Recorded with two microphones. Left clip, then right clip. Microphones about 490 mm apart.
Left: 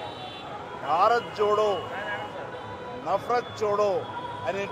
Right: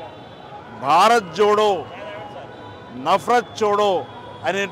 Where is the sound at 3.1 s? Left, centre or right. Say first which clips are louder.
Right 9 dB; right.